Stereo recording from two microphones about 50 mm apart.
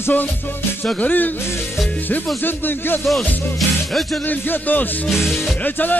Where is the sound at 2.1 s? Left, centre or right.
Left.